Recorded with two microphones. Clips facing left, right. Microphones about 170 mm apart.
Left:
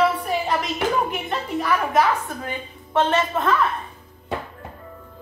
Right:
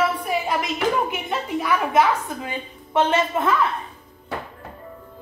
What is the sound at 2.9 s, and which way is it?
Speech, 15° right (ahead or behind).